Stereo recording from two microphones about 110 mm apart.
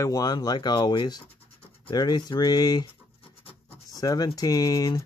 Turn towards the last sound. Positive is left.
turn(degrees=30)  # may be behind; listen again after turning